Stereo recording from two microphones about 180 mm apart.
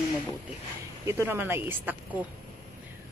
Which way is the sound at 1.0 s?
15° right (ahead or behind).